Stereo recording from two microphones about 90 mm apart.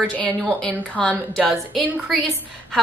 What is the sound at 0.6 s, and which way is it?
Speech, 15° left (ahead or behind).